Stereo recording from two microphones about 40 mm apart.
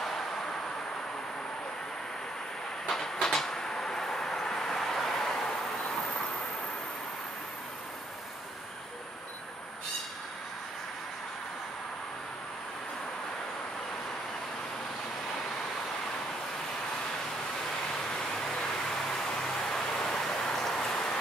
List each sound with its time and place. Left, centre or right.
2.9 s train: centre
17.9 s vehicle: centre